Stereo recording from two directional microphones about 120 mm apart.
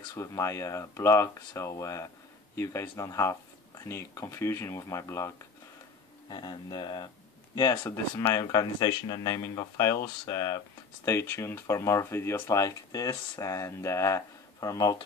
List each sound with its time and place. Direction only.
0.1 s speech: 25° left (ahead or behind)
6.2 s speech: 45° left (ahead or behind)
7.7 s speech: 20° left (ahead or behind)
8.4 s speech: 30° left (ahead or behind)